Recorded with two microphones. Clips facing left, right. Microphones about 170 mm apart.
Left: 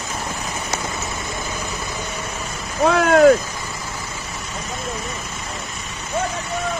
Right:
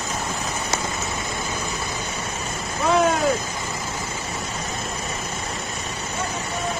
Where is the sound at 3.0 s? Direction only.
65° left (ahead or behind).